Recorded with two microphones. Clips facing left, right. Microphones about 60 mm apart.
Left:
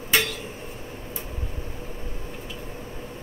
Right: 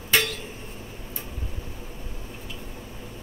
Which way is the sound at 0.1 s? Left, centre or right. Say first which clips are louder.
Even; centre.